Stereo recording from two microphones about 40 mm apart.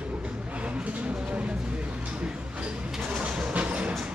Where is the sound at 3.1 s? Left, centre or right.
Right.